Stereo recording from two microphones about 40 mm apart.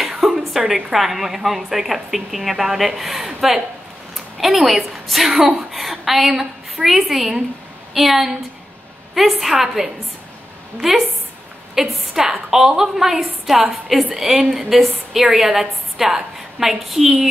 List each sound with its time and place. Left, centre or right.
0.2 s a sound: centre
0.9 s a woman's voice: centre
12.2 s a woman's voice: centre